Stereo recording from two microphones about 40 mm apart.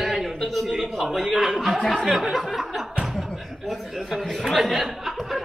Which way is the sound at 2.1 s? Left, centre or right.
Centre.